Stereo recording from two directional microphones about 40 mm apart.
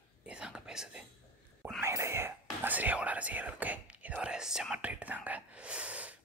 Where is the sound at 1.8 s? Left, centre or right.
Right.